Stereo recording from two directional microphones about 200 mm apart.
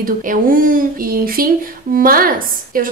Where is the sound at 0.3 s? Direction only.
45° right (ahead or behind).